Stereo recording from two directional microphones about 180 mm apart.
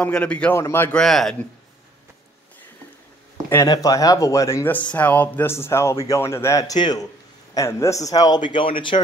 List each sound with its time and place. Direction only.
0.0 s speech: 5° left (ahead or behind)
3.4 s a man's voice: 15° left (ahead or behind)